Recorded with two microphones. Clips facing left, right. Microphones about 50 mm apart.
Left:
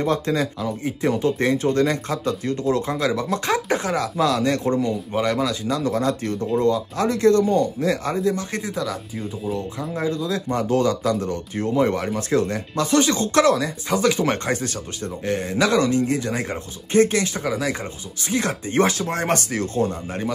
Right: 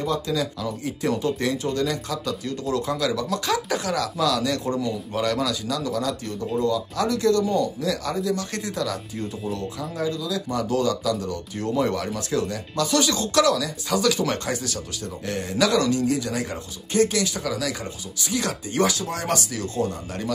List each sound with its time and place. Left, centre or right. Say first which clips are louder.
0.0 s speech: left 3 dB; left
0.6 s speech: left 3 dB; left
8.5 s speech: left 1 dB; centre
9.5 s speech: left 3 dB; left